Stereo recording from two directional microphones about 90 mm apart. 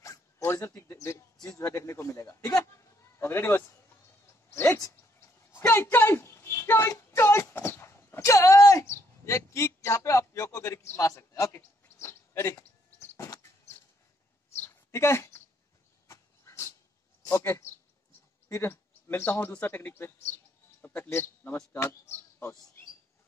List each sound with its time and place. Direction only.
0.0 s dog: 30° left (ahead or behind)
1.6 s a man's voice: 30° left (ahead or behind)
4.5 s dog: 25° left (ahead or behind)
5.7 s a woman's voice: 25° left (ahead or behind)
14.6 s a sound: 30° left (ahead or behind)
16.1 s dog: 35° left (ahead or behind)
17.3 s a man's voice: 30° left (ahead or behind)